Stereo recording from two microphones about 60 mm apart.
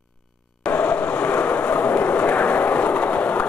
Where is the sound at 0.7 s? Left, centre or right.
Left.